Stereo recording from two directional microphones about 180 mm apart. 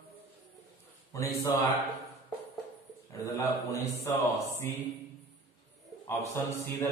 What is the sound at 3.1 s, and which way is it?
Speech, 15° left (ahead or behind).